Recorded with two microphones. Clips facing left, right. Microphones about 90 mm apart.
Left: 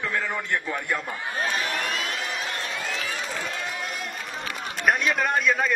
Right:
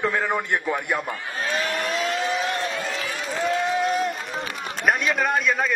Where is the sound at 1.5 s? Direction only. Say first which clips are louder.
Right 3 dB; 30° right (ahead or behind).